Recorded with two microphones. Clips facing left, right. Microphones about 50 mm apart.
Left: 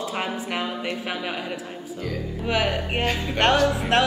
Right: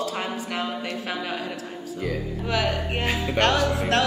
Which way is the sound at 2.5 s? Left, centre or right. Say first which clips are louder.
Left 2 dB; left.